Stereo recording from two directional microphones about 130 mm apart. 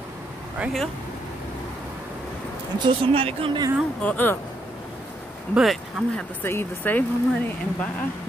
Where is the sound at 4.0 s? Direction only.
15° left (ahead or behind).